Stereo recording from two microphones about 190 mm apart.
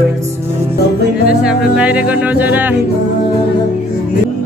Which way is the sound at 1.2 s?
5° right (ahead or behind).